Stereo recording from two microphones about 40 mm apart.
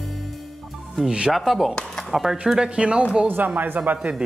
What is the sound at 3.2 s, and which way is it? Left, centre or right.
Speech, right.